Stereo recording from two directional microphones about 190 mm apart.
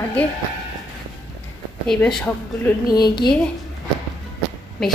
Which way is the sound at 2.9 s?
20° left (ahead or behind).